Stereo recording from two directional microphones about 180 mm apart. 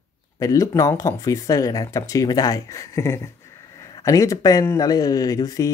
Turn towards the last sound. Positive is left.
turn(degrees=20)  # may be behind; listen again after turning